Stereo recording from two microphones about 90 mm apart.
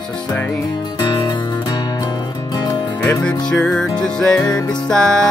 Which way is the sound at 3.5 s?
10° left (ahead or behind).